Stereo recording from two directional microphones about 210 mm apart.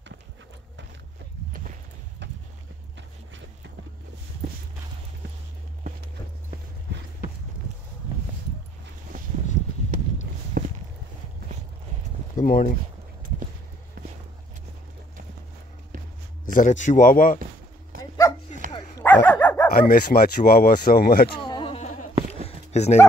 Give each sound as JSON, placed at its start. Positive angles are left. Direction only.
{"t": 10.6, "sound": "a sound", "side_deg": -45}
{"t": 12.4, "sound": "speech", "side_deg": 40}
{"t": 16.5, "sound": "speech", "side_deg": 35}
{"t": 17.9, "sound": "dog", "side_deg": -45}
{"t": 18.7, "sound": "dog", "side_deg": 10}
{"t": 19.7, "sound": "speech", "side_deg": 45}
{"t": 21.4, "sound": "a sound", "side_deg": 20}